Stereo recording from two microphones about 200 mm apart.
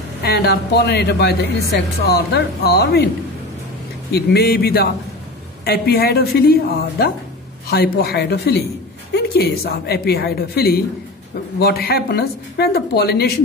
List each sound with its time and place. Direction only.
0.2 s a woman's voice: 55° left (ahead or behind)
4.1 s a woman's voice: 50° left (ahead or behind)